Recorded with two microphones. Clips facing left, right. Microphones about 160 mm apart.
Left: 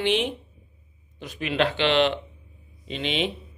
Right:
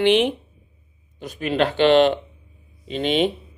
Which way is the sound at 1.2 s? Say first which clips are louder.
Right 3 dB; 40° right (ahead or behind).